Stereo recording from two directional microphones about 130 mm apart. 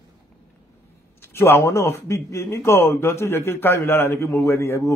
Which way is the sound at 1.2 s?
15° left (ahead or behind).